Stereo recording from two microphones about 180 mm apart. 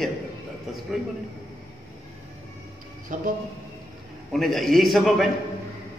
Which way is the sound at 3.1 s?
45° right (ahead or behind).